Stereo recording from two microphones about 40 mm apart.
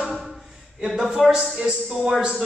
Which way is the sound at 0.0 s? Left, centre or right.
Centre.